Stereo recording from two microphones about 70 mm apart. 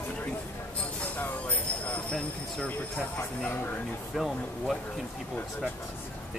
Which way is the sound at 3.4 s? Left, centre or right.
Left.